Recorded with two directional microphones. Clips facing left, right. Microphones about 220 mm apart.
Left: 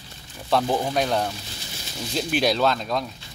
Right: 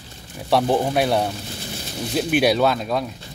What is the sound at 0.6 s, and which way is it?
Speech, 25° right (ahead or behind).